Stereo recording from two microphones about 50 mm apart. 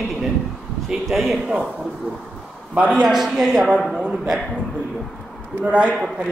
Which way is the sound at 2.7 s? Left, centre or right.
Right.